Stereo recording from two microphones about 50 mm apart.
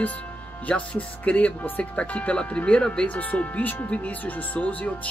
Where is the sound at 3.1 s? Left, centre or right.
Left.